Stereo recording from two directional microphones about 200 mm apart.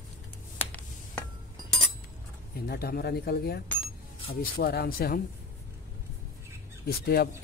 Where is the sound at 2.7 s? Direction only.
50° left (ahead or behind).